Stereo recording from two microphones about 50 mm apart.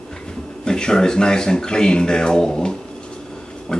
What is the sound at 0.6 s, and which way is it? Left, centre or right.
Speech, centre.